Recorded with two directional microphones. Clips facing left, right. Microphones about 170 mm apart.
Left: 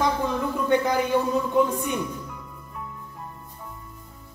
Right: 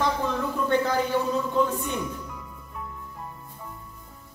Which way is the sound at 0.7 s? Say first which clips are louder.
Left 3 dB; 15° left (ahead or behind).